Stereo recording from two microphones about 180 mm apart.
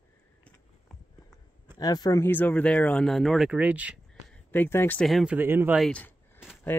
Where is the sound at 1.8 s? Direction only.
20° left (ahead or behind); by 3.9 s 10° right (ahead or behind).